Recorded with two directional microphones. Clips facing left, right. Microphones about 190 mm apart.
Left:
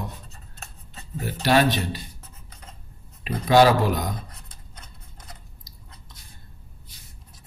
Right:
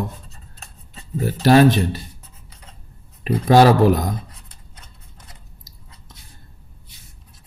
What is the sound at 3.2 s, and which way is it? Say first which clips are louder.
Speech: right 4 dB; 40° right (ahead or behind).